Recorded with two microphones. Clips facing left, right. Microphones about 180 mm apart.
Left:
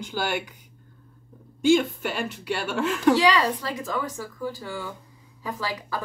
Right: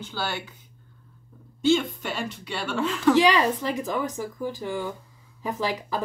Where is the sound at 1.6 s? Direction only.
10° left (ahead or behind).